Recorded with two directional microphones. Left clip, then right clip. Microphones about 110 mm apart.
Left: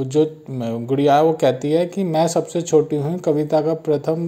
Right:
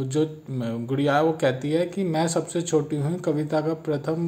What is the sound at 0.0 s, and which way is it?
Speech, 25° left (ahead or behind).